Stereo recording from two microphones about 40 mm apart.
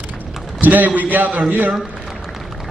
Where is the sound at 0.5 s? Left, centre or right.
Right.